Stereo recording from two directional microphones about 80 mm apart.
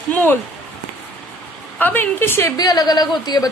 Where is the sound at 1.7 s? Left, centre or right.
Left.